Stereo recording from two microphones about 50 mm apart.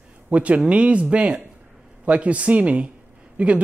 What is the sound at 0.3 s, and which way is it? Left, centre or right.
Speech, right.